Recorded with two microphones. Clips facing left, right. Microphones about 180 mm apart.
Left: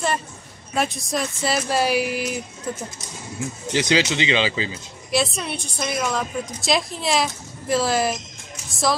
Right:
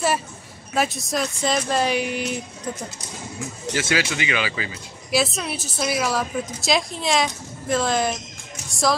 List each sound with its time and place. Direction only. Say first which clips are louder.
0.7 s a woman's voice: right 1 dB; centre (ahead or behind)
3.7 s speech: left 4 dB; 20° left (ahead or behind)
5.1 s a woman's voice: even; centre (ahead or behind)